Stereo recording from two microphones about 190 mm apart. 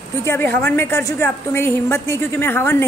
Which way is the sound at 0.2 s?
15° left (ahead or behind).